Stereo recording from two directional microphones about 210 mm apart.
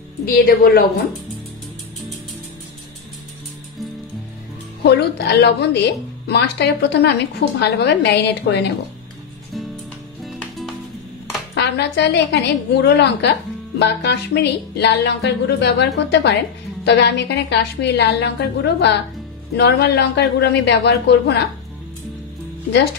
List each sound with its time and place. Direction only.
0.2 s a woman's voice: 45° left (ahead or behind)
5.4 s a woman's voice: 55° left (ahead or behind)
11.5 s a woman's voice: 55° left (ahead or behind)